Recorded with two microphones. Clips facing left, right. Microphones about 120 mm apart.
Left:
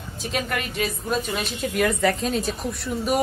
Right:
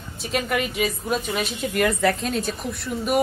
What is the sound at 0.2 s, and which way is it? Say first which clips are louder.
A woman's voice: right 3 dB; centre (ahead or behind).